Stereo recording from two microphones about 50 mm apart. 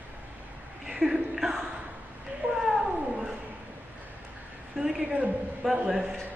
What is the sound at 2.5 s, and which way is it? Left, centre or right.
Cat, centre.